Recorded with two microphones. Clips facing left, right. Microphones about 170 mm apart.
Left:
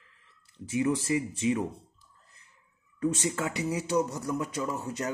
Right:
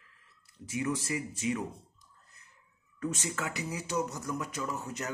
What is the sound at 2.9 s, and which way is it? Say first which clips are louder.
Speech: left 6 dB; 25° left (ahead or behind).